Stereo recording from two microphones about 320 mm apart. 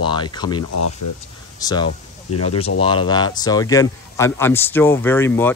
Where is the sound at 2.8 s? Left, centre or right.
Centre.